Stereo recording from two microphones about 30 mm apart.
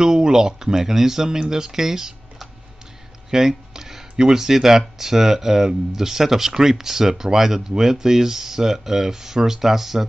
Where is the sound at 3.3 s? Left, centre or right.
Centre.